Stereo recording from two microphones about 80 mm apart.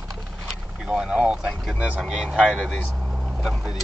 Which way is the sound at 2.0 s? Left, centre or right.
Centre.